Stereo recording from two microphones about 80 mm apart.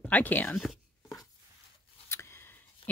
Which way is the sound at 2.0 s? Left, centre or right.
Left.